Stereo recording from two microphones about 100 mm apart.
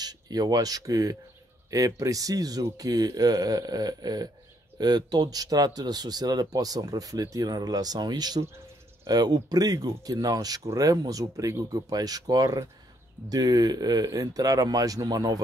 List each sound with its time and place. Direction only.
0.0 s speech: 40° right (ahead or behind)